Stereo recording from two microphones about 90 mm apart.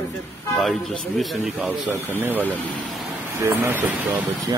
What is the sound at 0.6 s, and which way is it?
Speech, 5° left (ahead or behind).